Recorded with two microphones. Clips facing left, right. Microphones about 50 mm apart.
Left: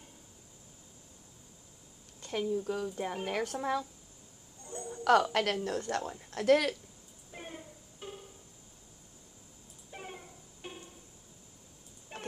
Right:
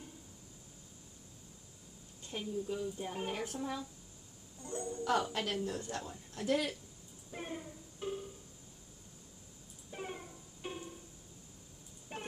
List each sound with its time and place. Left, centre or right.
2.2 s speech: left
4.8 s a woman's voice: left
7.3 s music: centre
9.8 s music: centre
12.1 s a sound: centre